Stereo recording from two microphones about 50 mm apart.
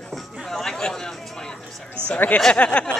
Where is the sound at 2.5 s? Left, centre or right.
Left.